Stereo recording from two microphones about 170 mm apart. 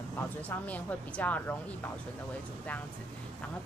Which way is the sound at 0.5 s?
10° left (ahead or behind).